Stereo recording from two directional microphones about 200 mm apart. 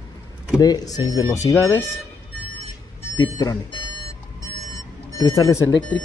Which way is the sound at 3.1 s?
20° left (ahead or behind).